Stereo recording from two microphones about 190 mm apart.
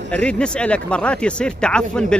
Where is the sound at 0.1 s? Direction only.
5° left (ahead or behind).